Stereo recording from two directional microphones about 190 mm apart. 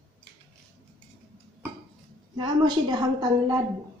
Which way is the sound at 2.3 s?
20° right (ahead or behind).